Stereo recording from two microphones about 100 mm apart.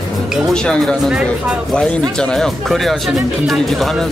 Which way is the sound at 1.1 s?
10° right (ahead or behind).